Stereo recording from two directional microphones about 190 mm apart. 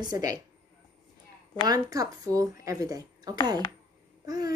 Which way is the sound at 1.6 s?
20° right (ahead or behind).